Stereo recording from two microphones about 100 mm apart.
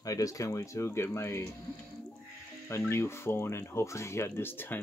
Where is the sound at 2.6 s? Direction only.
25° left (ahead or behind).